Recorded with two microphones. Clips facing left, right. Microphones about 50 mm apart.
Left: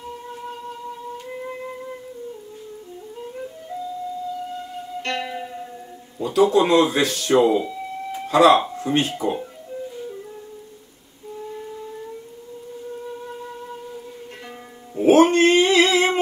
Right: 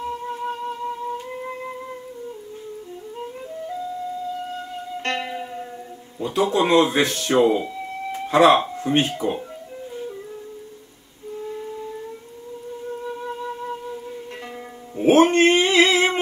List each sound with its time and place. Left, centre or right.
0.3 s music: right
5.0 s music: right
5.3 s music: centre
6.1 s speech: right
8.5 s a sound: right
9.2 s speech: right
13.5 s music: right
15.0 s music: right
15.5 s a sound: right